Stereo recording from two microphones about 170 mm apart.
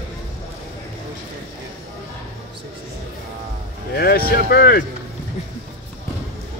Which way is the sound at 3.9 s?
65° left (ahead or behind).